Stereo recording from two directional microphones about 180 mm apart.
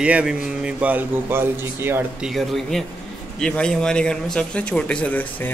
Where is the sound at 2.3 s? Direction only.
Centre (ahead or behind).